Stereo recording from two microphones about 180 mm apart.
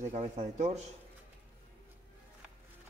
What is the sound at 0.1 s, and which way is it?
Speech, 35° right (ahead or behind).